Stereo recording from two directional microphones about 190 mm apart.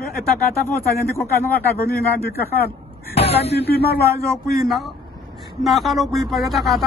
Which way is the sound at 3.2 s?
35° left (ahead or behind).